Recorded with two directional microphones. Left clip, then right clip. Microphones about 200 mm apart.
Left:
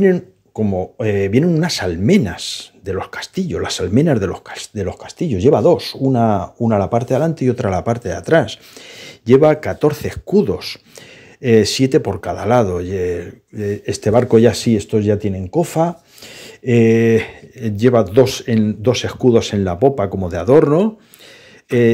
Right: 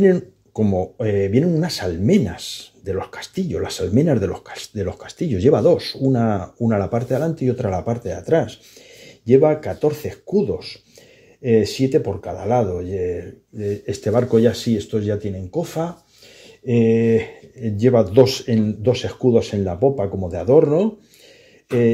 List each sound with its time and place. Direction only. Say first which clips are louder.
0.0 s speech: left 1 dB; 10° left (ahead or behind)
0.9 s speech: left 4 dB; 20° left (ahead or behind)